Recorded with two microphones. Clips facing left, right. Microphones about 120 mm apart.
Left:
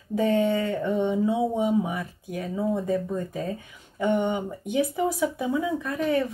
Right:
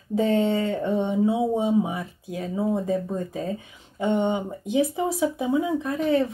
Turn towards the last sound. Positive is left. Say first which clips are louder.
# right 3 dB
turn(degrees=-25)  # may be behind; listen again after turning